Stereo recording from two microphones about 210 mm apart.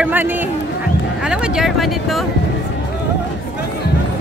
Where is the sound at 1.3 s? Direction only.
Centre (ahead or behind).